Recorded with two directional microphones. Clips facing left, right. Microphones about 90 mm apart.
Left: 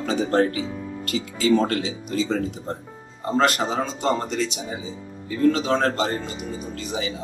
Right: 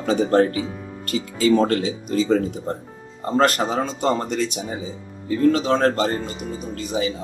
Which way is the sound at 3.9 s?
45° right (ahead or behind).